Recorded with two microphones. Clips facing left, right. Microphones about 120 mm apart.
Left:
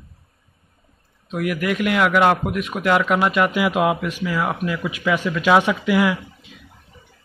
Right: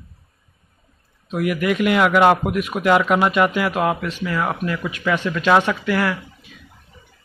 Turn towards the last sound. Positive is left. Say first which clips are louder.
# left 2 dB
turn(degrees=15)  # may be behind; listen again after turning